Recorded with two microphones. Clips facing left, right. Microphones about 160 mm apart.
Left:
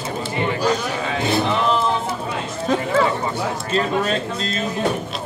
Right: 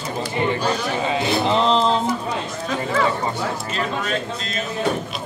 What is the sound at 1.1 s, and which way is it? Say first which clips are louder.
Speech: even; 25° right (ahead or behind).